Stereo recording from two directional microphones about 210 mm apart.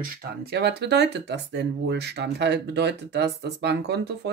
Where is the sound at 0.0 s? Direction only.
50° right (ahead or behind).